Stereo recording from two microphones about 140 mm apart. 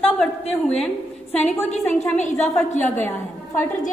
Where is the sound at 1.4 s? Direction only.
55° left (ahead or behind).